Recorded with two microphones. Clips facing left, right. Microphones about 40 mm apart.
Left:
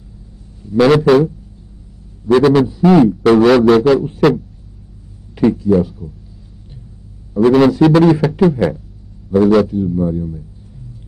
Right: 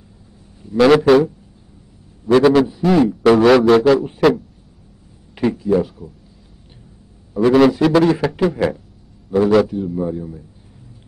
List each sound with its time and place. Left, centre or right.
0.6 s a man's voice: centre
2.3 s a man's voice: centre
3.1 s a man's voice: centre
5.3 s speech: centre
7.3 s a man's voice: centre